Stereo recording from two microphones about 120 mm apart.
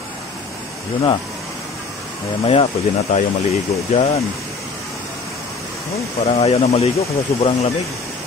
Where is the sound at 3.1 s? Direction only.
60° left (ahead or behind).